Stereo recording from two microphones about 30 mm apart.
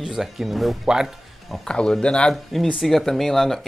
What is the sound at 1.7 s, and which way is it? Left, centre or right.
Speech, left.